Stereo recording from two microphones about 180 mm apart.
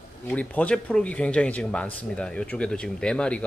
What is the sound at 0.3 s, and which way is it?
Speech, 10° left (ahead or behind).